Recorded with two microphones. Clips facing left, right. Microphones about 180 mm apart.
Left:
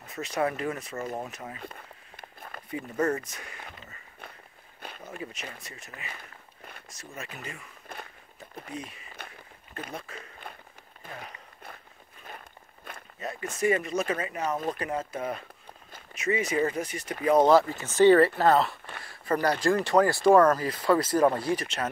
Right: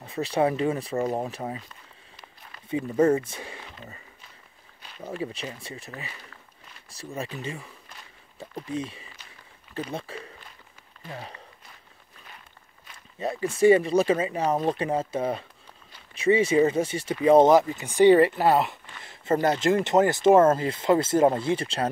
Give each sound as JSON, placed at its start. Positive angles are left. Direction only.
{"t": 0.0, "sound": "speech", "side_deg": -30}
{"t": 2.1, "sound": "a sound", "side_deg": 50}
{"t": 2.7, "sound": "speech", "side_deg": -25}
{"t": 5.0, "sound": "speech", "side_deg": -30}
{"t": 10.4, "sound": "a sound", "side_deg": 60}
{"t": 12.9, "sound": "walk", "side_deg": 55}
{"t": 13.2, "sound": "speech", "side_deg": -30}